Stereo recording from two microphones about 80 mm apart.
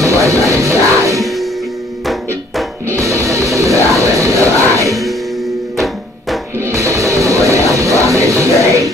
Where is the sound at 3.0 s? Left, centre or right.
Right.